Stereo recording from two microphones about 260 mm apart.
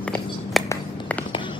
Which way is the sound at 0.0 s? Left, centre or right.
Centre.